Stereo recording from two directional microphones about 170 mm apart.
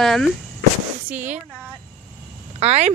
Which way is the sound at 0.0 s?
Centre (ahead or behind).